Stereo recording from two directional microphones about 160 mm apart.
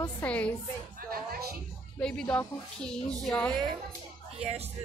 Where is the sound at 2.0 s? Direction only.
5° left (ahead or behind).